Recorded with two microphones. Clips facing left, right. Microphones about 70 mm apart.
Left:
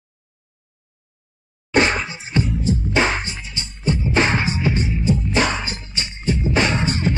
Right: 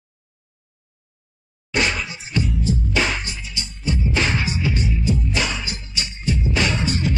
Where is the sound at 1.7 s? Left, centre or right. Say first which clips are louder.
Left 5 dB; left.